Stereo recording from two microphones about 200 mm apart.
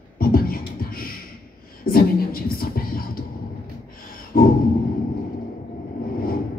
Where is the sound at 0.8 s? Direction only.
45° left (ahead or behind).